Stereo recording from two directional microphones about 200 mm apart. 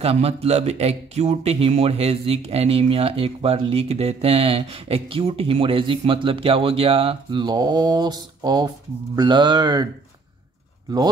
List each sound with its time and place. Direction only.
0.0 s speech: 30° right (ahead or behind)